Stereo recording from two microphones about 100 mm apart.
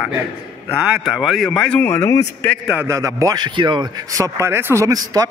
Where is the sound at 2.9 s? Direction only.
30° right (ahead or behind); by 3.9 s 50° right (ahead or behind).